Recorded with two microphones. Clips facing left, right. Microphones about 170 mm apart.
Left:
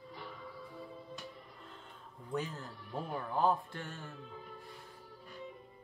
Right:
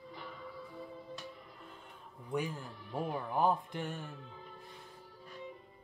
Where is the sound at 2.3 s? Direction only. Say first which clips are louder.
Right 2 dB; 15° right (ahead or behind).